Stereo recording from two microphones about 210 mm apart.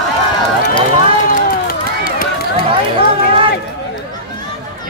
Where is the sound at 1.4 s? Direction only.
45° left (ahead or behind).